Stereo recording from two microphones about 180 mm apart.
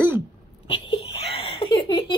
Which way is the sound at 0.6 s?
30° left (ahead or behind).